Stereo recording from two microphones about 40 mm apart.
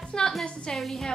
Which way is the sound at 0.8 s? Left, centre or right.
Centre.